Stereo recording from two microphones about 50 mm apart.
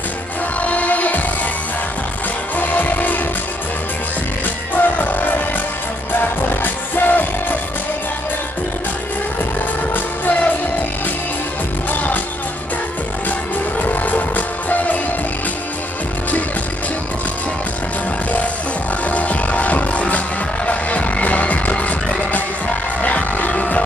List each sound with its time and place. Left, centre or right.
0.6 s music: left
2.5 s music: left
4.7 s music: left
9.9 s music: left
11.9 s music: left
13.7 s music: left
19.0 s music: left